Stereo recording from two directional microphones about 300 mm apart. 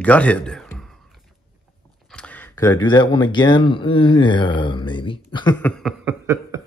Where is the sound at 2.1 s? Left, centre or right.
Centre.